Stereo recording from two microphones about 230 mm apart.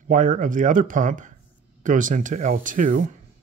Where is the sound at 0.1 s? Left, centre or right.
Right.